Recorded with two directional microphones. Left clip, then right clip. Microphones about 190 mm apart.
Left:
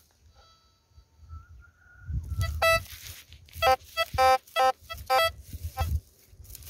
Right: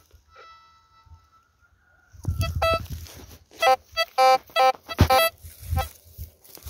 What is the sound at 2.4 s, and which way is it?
Heart sounds, 25° right (ahead or behind).